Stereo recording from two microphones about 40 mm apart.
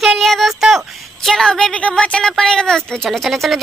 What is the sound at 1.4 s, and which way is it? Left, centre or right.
Speech, left.